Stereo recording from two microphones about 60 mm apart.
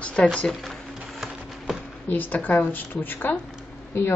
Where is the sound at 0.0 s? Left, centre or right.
Centre.